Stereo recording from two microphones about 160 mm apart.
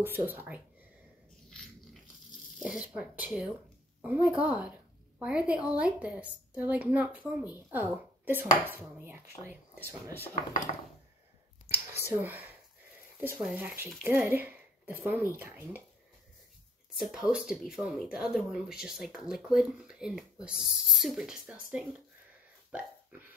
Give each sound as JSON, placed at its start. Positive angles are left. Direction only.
{"t": 0.0, "sound": "a woman's voice", "side_deg": -10}
{"t": 2.6, "sound": "a woman's voice", "side_deg": -5}
{"t": 10.5, "sound": "wood", "side_deg": 50}
{"t": 12.0, "sound": "a woman's voice", "side_deg": -15}
{"t": 16.9, "sound": "speech", "side_deg": -5}
{"t": 22.7, "sound": "hiccup", "side_deg": -10}